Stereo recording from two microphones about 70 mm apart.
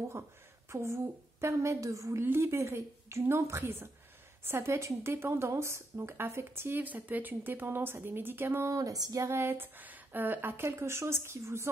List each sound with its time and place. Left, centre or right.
0.7 s a woman's voice: right
8.6 s speech: right